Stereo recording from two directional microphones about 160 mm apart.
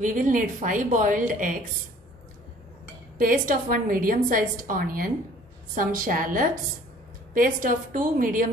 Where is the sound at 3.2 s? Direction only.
60° right (ahead or behind).